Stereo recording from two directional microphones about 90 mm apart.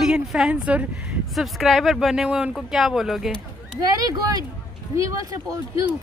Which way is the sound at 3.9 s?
45° right (ahead or behind).